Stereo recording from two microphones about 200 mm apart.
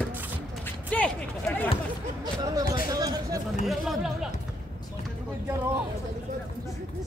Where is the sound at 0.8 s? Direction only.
5° left (ahead or behind).